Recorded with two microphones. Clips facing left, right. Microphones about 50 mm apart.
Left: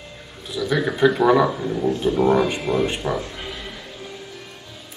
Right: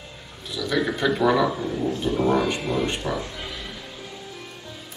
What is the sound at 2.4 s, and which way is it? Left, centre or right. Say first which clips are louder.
Speech: left 2 dB; centre.